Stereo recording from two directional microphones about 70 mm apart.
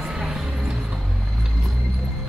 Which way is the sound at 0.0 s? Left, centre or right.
Centre.